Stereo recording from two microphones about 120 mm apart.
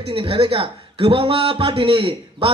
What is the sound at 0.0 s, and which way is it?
Speech, 50° right (ahead or behind).